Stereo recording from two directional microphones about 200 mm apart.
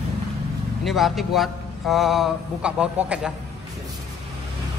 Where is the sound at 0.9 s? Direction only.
Centre (ahead or behind).